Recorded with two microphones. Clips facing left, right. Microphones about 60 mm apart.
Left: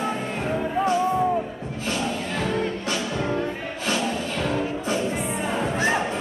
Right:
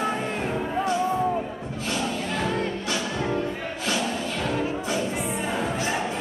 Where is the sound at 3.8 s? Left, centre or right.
Left.